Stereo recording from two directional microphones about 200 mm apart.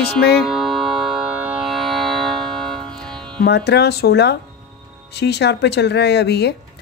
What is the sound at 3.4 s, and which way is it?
Speech, 55° left (ahead or behind).